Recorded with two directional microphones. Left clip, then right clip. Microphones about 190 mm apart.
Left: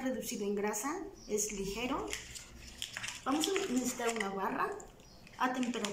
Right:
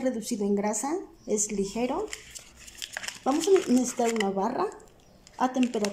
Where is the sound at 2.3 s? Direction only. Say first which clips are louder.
Right 4 dB; 45° right (ahead or behind).